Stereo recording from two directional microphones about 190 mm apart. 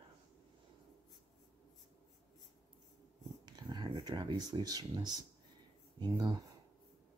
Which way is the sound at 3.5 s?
20° right (ahead or behind).